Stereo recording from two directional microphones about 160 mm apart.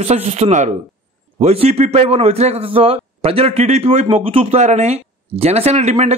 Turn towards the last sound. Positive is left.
turn(degrees=-45)  # may be behind; listen again after turning